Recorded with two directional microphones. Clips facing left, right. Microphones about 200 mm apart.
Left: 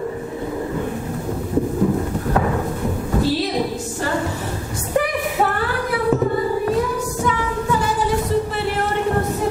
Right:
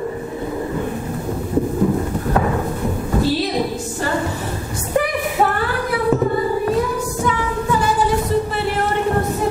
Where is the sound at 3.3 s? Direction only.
15° right (ahead or behind).